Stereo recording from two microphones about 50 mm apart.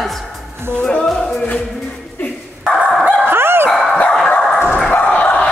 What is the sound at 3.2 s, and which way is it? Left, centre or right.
Dog, right.